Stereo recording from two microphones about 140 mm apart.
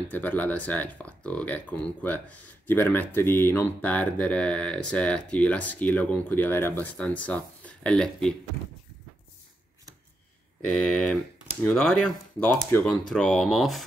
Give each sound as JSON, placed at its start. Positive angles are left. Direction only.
{"t": 0.1, "sound": "speech", "side_deg": 10}
{"t": 10.7, "sound": "speech", "side_deg": 5}
{"t": 13.1, "sound": "speech", "side_deg": 0}